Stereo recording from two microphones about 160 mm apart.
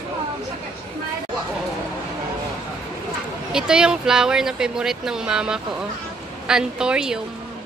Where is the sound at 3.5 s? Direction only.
5° right (ahead or behind).